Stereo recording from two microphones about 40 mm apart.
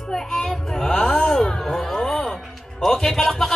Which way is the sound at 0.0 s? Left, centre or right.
Centre.